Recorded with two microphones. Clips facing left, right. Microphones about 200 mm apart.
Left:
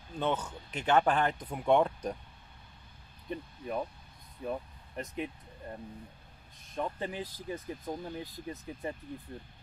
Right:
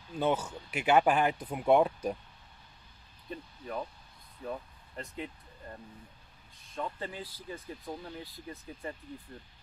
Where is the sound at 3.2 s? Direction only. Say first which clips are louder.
Left 3 dB; 15° left (ahead or behind).